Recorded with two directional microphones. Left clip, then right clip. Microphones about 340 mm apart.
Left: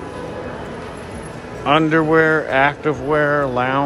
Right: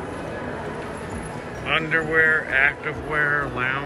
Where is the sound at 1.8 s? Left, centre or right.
Centre.